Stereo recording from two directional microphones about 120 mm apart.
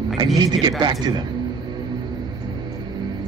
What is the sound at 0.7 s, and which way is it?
Speech, 35° right (ahead or behind).